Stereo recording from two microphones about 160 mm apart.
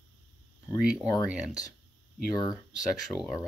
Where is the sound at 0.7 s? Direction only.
5° right (ahead or behind).